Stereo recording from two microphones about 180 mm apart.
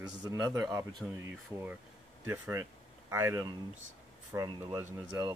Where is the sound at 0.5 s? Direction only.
20° right (ahead or behind).